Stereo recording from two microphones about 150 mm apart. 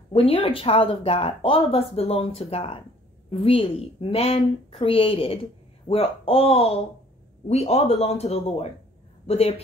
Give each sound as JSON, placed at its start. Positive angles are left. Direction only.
{"t": 0.1, "sound": "a woman's voice", "side_deg": 40}